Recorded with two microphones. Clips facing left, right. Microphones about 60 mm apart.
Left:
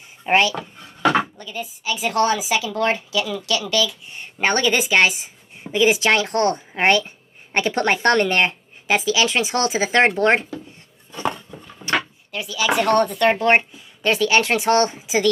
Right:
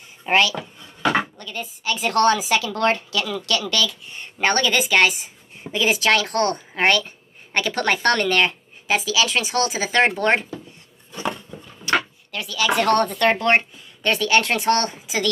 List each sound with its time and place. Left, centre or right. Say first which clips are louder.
0.3 s speech: left 1 dB; centre
11.9 s drawer open or close: right 1 dB; left
12.3 s speech: left 1 dB; centre